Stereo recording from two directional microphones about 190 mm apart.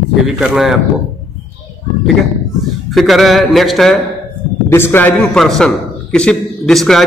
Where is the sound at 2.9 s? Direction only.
Centre (ahead or behind).